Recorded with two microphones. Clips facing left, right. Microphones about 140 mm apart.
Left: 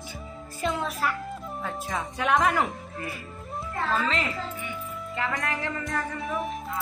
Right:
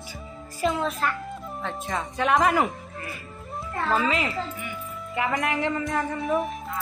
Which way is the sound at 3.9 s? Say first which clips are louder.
Right 4 dB; 10° right (ahead or behind).